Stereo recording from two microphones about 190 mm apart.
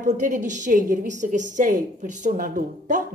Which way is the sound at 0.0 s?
40° right (ahead or behind).